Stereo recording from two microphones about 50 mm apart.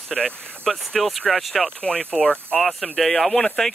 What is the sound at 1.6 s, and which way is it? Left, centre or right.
Speech, left.